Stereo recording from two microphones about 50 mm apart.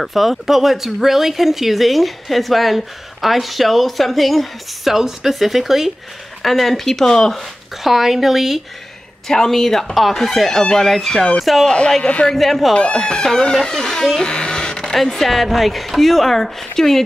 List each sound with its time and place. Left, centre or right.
0.0 s speech: centre
7.8 s speech: centre
9.3 s speech: centre
11.6 s speech: centre
12.4 s speech: centre